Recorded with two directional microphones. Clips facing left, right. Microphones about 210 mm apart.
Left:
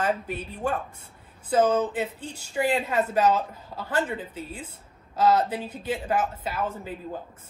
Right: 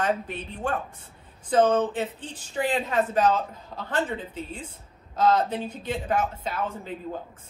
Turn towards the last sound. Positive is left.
turn(degrees=10)  # may be behind; listen again after turning